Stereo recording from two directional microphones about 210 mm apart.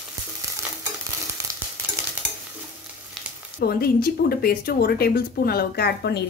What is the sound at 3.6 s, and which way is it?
Speech, 45° left (ahead or behind).